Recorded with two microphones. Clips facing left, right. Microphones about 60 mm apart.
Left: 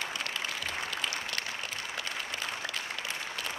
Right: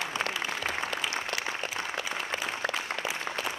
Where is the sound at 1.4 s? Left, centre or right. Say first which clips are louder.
Right 4 dB; centre.